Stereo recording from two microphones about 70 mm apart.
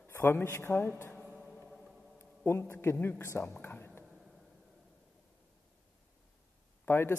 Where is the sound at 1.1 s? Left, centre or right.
Centre.